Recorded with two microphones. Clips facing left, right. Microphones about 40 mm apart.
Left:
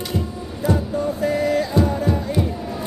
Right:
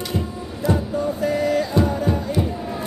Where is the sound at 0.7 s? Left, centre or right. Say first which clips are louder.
Even; centre.